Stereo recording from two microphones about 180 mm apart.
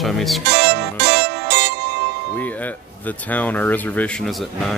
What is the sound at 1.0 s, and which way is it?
Music, 70° right (ahead or behind).